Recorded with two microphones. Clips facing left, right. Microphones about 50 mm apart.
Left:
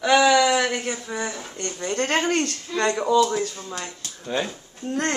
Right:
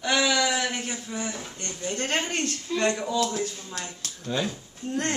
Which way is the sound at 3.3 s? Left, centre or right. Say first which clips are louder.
Left 4 dB; left.